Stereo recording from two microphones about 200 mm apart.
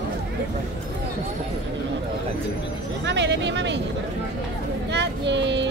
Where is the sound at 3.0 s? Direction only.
60° right (ahead or behind).